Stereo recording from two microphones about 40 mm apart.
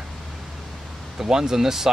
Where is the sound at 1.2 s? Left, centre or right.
Centre.